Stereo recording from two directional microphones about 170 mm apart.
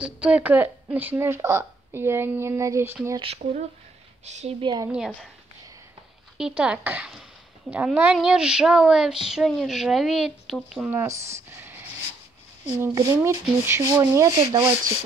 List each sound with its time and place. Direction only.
0.0 s a woman's voice: 5° right (ahead or behind)
4.2 s a woman's voice: 40° right (ahead or behind)
4.8 s speech: 5° right (ahead or behind)
6.3 s speech: 5° right (ahead or behind)
10.9 s a woman's voice: 15° right (ahead or behind)
12.8 s a woman's voice: 20° right (ahead or behind)